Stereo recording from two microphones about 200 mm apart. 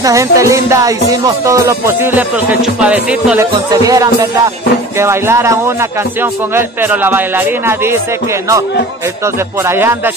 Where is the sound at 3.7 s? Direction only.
15° right (ahead or behind).